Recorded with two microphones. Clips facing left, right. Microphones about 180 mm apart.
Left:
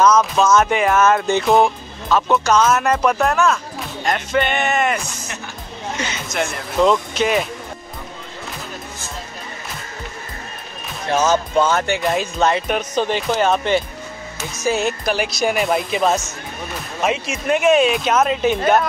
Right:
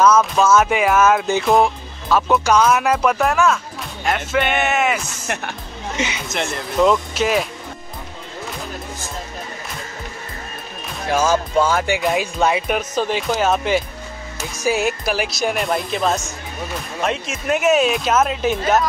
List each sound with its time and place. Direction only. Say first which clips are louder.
0.0 s speech: even; 5° right (ahead or behind)
5.3 s speech: right 6 dB; 65° right (ahead or behind)
6.1 s speech: left 1 dB; centre (ahead or behind)
11.1 s speech: left 1 dB; 10° right (ahead or behind)